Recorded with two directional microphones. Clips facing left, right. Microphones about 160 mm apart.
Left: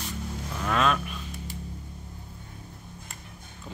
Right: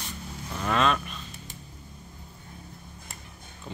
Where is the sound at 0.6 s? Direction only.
Centre (ahead or behind).